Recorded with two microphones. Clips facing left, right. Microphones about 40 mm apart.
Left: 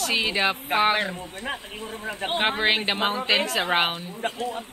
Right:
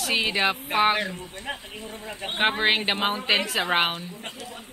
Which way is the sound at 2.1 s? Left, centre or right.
Left.